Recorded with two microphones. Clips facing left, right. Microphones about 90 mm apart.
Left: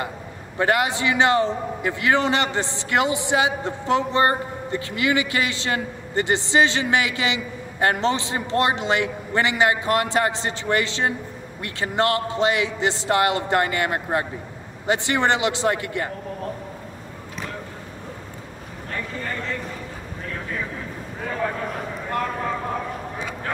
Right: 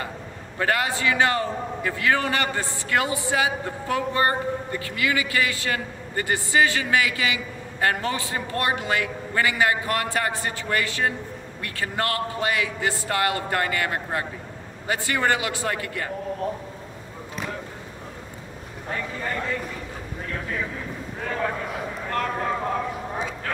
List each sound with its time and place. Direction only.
0.6 s a man's voice: 20° left (ahead or behind)
21.2 s a man's voice: centre (ahead or behind)